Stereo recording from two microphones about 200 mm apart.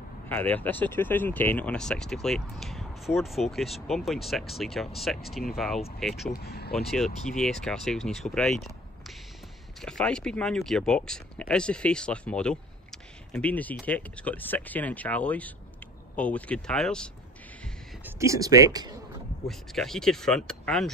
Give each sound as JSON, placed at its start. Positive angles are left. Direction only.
{"t": 0.3, "sound": "speech", "side_deg": 10}
{"t": 6.2, "sound": "speech", "side_deg": 55}
{"t": 7.3, "sound": "speech", "side_deg": 5}
{"t": 18.0, "sound": "speech", "side_deg": -15}
{"t": 19.4, "sound": "speech", "side_deg": 0}